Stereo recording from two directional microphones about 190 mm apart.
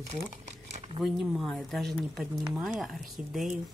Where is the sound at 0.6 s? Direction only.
35° right (ahead or behind).